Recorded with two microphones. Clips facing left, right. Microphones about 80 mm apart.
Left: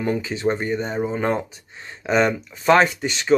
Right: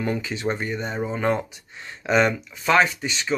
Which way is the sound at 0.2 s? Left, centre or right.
Left.